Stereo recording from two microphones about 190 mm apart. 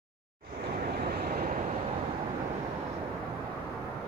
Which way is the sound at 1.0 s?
55° right (ahead or behind).